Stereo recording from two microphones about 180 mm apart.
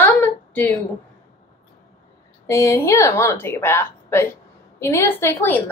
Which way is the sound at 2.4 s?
15° left (ahead or behind).